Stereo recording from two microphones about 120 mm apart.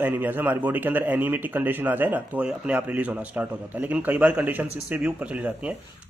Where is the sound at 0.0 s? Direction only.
15° right (ahead or behind).